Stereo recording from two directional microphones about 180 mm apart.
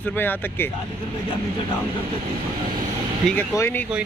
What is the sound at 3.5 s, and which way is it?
Speech, 15° left (ahead or behind).